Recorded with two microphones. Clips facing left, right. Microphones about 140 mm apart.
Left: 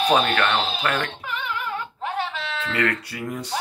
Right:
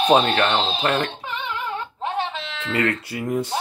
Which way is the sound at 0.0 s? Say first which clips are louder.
Right 3 dB; 25° right (ahead or behind).